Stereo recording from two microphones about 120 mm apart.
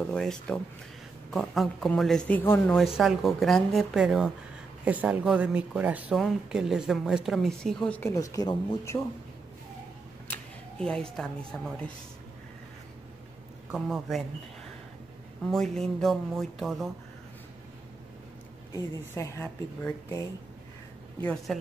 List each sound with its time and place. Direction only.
0.1 s a woman's voice: 5° left (ahead or behind)
2.7 s a woman's voice: centre (ahead or behind)
8.1 s a woman's voice: 30° left (ahead or behind)
10.3 s speech: 5° left (ahead or behind)
13.7 s a woman's voice: 5° right (ahead or behind)
15.4 s a woman's voice: 5° left (ahead or behind)
18.7 s a woman's voice: 25° left (ahead or behind)
19.4 s speech: 15° left (ahead or behind)
21.5 s a woman's voice: centre (ahead or behind)